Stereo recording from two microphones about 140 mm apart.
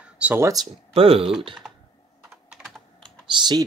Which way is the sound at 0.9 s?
45° right (ahead or behind).